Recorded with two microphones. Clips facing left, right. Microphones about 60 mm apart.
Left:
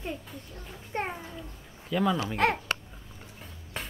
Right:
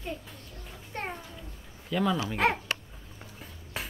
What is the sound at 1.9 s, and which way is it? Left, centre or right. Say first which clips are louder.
Speech: left 1 dB; centre.